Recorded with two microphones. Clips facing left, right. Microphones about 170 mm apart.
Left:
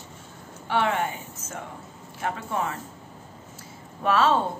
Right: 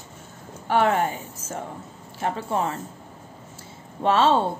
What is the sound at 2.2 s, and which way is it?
Speech, 30° right (ahead or behind).